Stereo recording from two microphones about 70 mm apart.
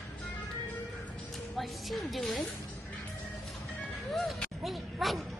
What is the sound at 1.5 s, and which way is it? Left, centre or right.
Music, centre.